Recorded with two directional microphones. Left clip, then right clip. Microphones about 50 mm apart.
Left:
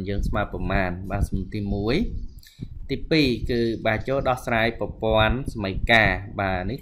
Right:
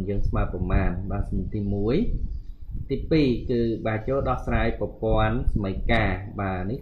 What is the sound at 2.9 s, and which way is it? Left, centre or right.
Speech, left.